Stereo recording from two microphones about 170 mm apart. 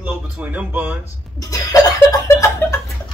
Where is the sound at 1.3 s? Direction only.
20° left (ahead or behind).